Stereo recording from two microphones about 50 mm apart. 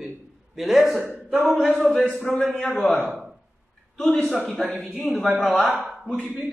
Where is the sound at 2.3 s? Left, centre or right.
Centre.